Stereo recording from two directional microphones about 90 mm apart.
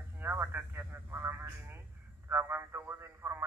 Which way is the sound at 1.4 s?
25° right (ahead or behind).